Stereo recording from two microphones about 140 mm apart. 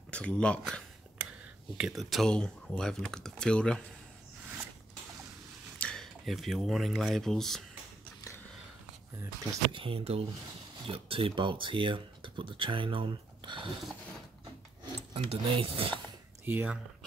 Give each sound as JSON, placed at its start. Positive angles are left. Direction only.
{"t": 0.1, "sound": "speech", "side_deg": 10}
{"t": 5.8, "sound": "speech", "side_deg": 5}
{"t": 9.2, "sound": "speech", "side_deg": -20}
{"t": 9.7, "sound": "speech", "side_deg": -40}
{"t": 15.0, "sound": "speech", "side_deg": -45}
{"t": 16.4, "sound": "speech", "side_deg": -15}